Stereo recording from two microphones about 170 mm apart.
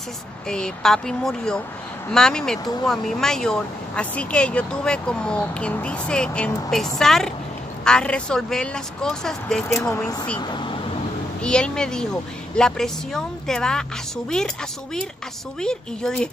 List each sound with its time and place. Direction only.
0.5 s speech: 5° left (ahead or behind)
10.4 s speech: 25° left (ahead or behind)
11.4 s speech: 5° left (ahead or behind)
15.6 s speech: 5° left (ahead or behind)